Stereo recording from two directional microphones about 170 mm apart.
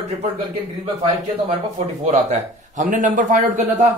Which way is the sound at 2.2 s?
45° right (ahead or behind).